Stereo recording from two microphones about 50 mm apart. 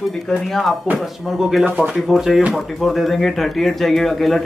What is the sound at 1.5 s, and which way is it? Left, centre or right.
Speech, centre.